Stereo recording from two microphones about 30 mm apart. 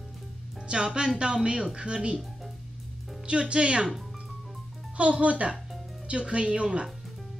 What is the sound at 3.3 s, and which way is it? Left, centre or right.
Speech, right.